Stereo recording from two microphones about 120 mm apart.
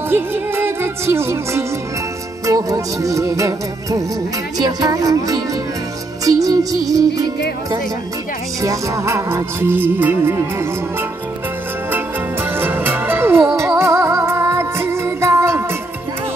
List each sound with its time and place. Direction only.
0.1 s music: 20° right (ahead or behind)
4.6 s speech: 30° right (ahead or behind)
6.2 s music: 30° right (ahead or behind)
8.5 s music: 25° right (ahead or behind)
12.5 s music: 20° right (ahead or behind)